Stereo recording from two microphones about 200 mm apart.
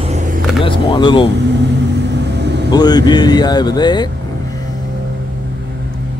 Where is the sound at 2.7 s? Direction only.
20° left (ahead or behind).